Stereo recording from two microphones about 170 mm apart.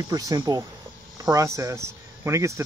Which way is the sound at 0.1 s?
20° right (ahead or behind).